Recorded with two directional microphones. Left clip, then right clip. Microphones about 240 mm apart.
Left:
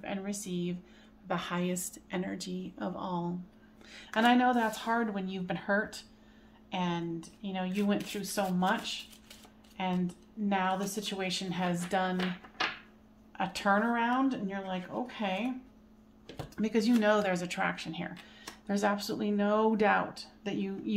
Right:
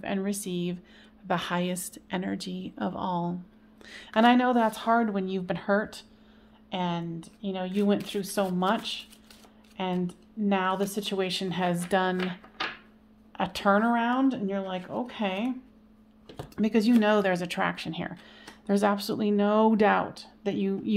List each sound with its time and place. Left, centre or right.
0.0 s speech: right
13.3 s speech: right